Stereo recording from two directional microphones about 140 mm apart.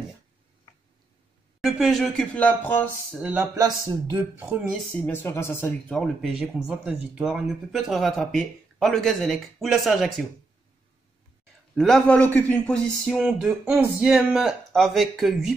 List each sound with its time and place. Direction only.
1.6 s speech: centre (ahead or behind)
3.2 s speech: 10° right (ahead or behind)
3.5 s speech: 25° right (ahead or behind); by 4.7 s 10° right (ahead or behind)
4.7 s speech: 10° left (ahead or behind)
6.2 s speech: 5° right (ahead or behind)
11.7 s speech: 5° left (ahead or behind)